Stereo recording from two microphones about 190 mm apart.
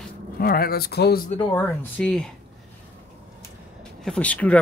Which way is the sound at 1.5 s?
10° left (ahead or behind).